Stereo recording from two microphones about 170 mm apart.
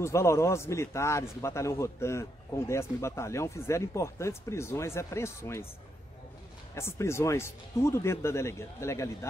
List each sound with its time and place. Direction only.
0.0 s a man's voice: 15° left (ahead or behind)
6.7 s a man's voice: 15° left (ahead or behind)